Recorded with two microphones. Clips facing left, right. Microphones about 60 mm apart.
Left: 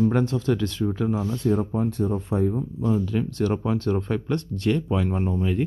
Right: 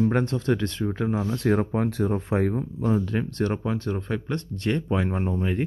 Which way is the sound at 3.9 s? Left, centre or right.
Centre.